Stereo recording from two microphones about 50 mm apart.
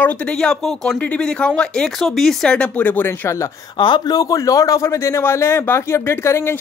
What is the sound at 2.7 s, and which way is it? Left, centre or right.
Speech, left.